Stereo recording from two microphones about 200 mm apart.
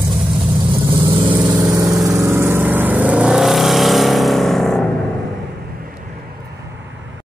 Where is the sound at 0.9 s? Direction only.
25° right (ahead or behind); by 4.8 s centre (ahead or behind).